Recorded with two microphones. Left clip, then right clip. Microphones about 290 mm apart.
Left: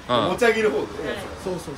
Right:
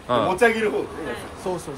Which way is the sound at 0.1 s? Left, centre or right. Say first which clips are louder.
Even; centre.